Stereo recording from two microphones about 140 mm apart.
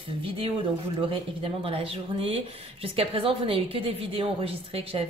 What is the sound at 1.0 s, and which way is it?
Speech, 40° right (ahead or behind).